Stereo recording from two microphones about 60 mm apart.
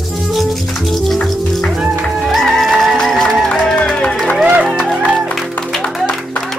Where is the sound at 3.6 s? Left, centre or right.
Centre.